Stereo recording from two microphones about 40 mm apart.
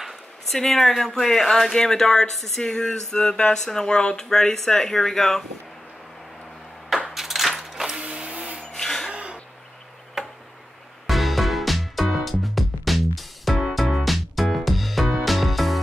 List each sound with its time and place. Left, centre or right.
0.6 s speech: centre
2.6 s speech: centre
7.1 s a sound: centre
8.0 s printer: right
8.7 s a sound: centre
9.1 s throat clearing: right
10.2 s tick-tock: centre
11.1 s music: centre